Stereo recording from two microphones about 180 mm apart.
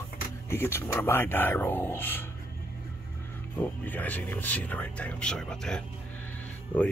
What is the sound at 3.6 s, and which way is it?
Speech, 10° left (ahead or behind).